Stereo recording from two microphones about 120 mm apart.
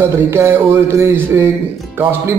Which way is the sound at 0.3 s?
20° right (ahead or behind).